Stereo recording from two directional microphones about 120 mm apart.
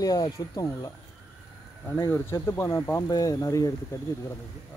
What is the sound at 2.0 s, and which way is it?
Speech, 25° left (ahead or behind).